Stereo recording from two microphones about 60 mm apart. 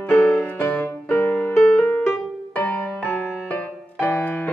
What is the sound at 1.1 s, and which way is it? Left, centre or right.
Music, left.